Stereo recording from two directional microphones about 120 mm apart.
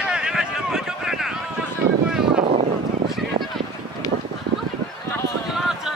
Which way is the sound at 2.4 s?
55° right (ahead or behind).